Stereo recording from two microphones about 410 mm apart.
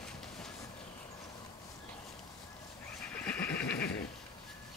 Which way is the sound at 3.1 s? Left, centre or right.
Centre.